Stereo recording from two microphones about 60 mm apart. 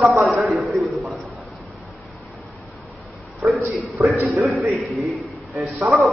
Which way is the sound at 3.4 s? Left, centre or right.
Right.